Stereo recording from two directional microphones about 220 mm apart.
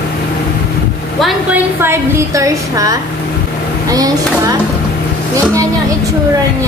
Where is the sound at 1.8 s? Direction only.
15° right (ahead or behind).